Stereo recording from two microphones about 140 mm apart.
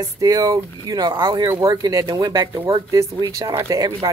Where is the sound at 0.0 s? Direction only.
25° right (ahead or behind).